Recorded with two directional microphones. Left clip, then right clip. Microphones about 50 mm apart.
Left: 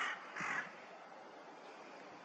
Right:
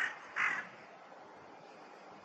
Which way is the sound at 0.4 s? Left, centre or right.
Right.